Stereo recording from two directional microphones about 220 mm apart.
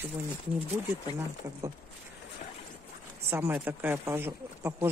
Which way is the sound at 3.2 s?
10° right (ahead or behind).